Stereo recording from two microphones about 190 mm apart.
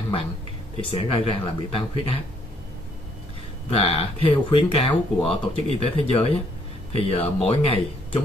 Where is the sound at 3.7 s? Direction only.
30° left (ahead or behind).